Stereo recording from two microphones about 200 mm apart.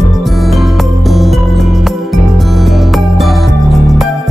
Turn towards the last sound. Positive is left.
turn(degrees=0)  # may be behind; listen again after turning